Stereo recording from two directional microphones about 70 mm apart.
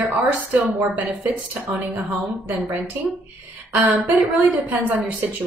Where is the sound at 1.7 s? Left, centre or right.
Centre.